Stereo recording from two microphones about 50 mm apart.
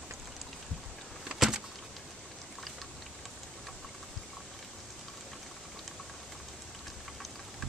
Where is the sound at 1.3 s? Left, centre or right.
Centre.